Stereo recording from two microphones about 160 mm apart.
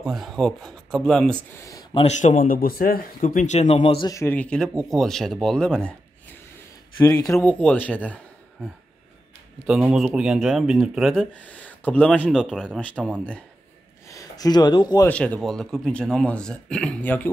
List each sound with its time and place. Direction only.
0.0 s speech: centre (ahead or behind)
1.6 s speech: 20° left (ahead or behind)
2.0 s a man's voice: 45° left (ahead or behind)
4.1 s speech: 15° left (ahead or behind)
7.0 s speech: 25° left (ahead or behind)
7.3 s speech: 5° left (ahead or behind)
9.7 s speech: 5° right (ahead or behind)
14.0 s speech: 20° left (ahead or behind)
15.0 s speech: 10° left (ahead or behind)